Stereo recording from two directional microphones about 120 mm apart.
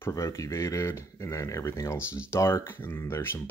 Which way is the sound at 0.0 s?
25° left (ahead or behind).